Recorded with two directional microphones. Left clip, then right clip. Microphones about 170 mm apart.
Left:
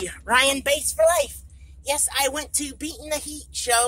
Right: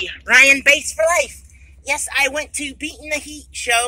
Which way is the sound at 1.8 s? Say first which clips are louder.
Right 5 dB; 30° right (ahead or behind).